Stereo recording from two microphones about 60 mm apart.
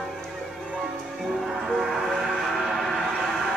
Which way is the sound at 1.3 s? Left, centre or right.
Centre.